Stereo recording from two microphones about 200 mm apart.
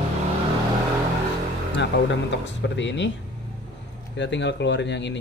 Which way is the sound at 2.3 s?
65° left (ahead or behind).